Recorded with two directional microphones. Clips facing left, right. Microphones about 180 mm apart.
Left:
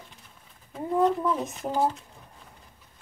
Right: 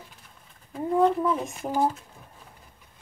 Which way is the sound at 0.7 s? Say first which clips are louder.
Right 2 dB; centre (ahead or behind).